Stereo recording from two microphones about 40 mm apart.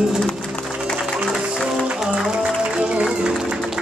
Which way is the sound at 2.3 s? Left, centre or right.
Right.